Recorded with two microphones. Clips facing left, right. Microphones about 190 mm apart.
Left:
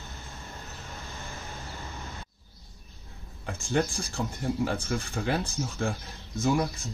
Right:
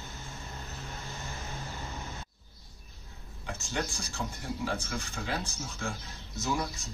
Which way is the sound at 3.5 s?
55° left (ahead or behind).